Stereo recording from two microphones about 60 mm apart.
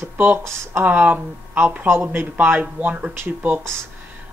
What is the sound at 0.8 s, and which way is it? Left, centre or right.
Speech, right.